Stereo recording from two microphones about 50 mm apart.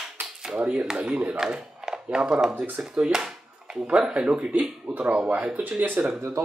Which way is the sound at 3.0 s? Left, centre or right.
Centre.